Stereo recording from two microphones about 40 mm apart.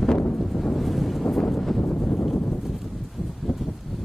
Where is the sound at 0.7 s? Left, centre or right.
Centre.